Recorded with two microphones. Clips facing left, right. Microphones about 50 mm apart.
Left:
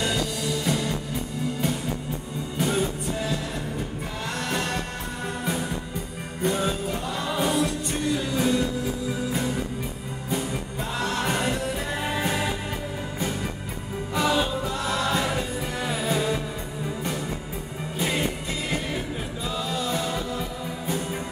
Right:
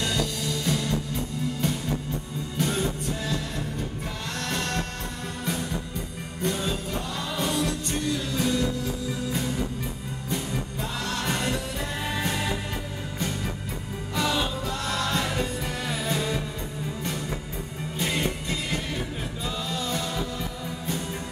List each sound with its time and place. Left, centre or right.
0.0 s music: centre
4.5 s music: centre
14.1 s music: centre